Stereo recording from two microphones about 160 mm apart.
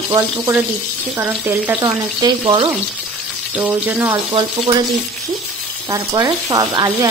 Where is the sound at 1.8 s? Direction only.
25° right (ahead or behind).